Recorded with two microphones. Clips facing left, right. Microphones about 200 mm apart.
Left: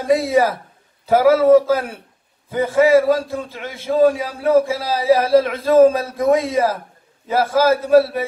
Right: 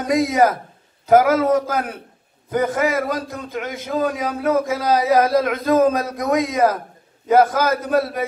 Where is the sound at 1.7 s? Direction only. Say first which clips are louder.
Right 1 dB; 50° right (ahead or behind).